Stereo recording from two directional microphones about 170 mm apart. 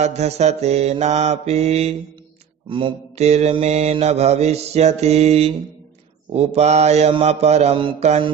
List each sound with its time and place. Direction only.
0.0 s mantra: 40° right (ahead or behind)